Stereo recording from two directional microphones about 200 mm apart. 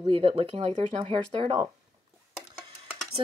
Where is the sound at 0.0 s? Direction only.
25° right (ahead or behind).